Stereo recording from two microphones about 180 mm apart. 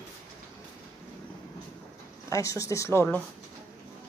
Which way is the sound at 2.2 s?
15° left (ahead or behind).